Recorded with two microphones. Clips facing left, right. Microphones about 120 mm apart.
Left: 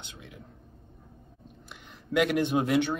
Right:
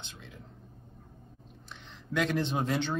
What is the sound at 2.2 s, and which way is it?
Speech, 10° left (ahead or behind).